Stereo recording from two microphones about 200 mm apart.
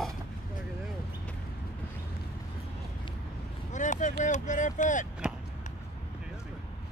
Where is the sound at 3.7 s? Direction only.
40° left (ahead or behind).